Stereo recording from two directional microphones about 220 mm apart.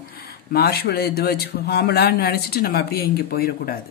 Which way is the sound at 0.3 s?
45° left (ahead or behind).